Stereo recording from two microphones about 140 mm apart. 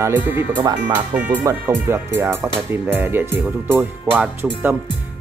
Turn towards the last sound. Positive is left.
turn(degrees=-15)  # may be behind; listen again after turning